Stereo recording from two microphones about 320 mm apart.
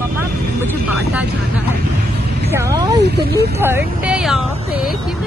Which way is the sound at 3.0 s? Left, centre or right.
Right.